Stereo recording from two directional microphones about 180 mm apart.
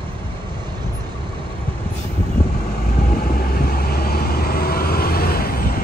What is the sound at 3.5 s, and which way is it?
Vehicle, 55° left (ahead or behind).